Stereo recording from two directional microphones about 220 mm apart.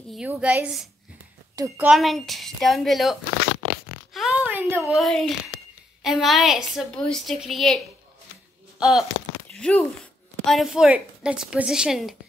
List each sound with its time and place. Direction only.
0.1 s a woman's voice: 5° right (ahead or behind)
1.5 s speech: 15° right (ahead or behind)
1.9 s a woman's voice: centre (ahead or behind)
4.1 s a sound: centre (ahead or behind)
6.0 s a woman's voice: centre (ahead or behind)